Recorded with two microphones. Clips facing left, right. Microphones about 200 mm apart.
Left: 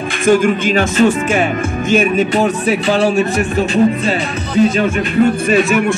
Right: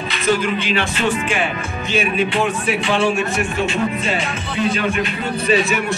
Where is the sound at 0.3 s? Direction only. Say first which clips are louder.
Left 7 dB; 50° left (ahead or behind).